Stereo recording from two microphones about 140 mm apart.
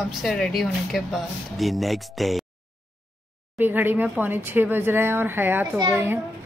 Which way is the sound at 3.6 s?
15° right (ahead or behind).